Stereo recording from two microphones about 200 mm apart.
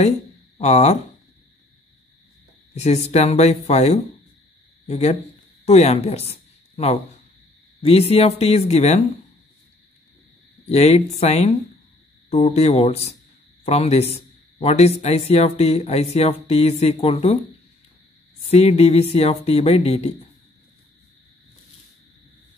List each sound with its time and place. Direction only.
0.6 s speech: 35° left (ahead or behind)
2.7 s a woman's voice: 35° left (ahead or behind)
10.7 s speech: 30° left (ahead or behind)
18.5 s speech: 30° left (ahead or behind)